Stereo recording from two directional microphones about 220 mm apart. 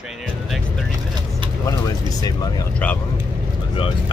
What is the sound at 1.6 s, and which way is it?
Speech, 15° left (ahead or behind).